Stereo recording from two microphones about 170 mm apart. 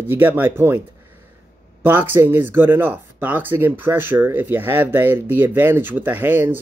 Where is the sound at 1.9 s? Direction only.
10° right (ahead or behind).